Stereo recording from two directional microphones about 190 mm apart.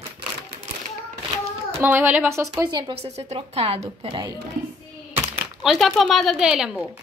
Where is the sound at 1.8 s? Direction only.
10° right (ahead or behind); by 4.3 s 25° right (ahead or behind).